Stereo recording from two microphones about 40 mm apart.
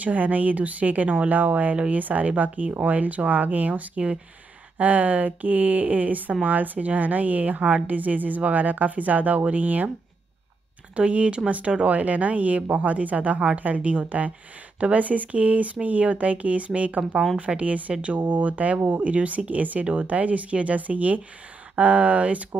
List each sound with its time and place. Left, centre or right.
0.0 s a woman's voice: right
11.0 s a woman's voice: right